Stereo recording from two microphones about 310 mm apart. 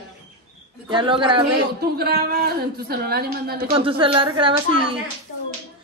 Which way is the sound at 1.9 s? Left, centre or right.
Right.